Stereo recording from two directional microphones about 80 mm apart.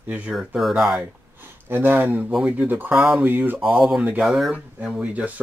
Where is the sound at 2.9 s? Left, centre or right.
Centre.